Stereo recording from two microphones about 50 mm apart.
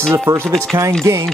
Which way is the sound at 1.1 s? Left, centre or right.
Right.